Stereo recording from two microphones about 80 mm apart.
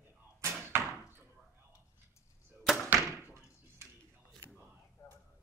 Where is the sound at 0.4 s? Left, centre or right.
Right.